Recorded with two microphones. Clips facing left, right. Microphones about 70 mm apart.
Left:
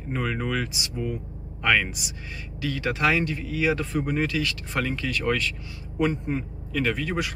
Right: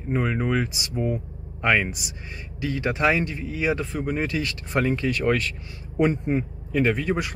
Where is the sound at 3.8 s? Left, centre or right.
Centre.